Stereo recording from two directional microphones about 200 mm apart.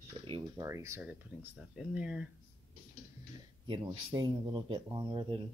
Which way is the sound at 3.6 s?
25° right (ahead or behind).